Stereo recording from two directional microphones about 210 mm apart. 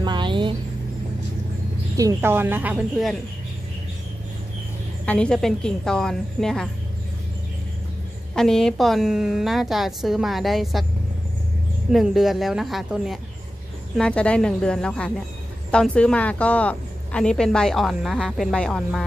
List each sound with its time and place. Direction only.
0.0 s a sound: 20° right (ahead or behind)
2.0 s speech: 15° right (ahead or behind)
5.0 s a woman's voice: 5° left (ahead or behind)
8.4 s a woman's voice: centre (ahead or behind)
11.9 s a woman's voice: centre (ahead or behind)